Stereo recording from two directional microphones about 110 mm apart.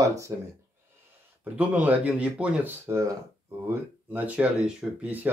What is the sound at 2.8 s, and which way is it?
Speech, 25° right (ahead or behind).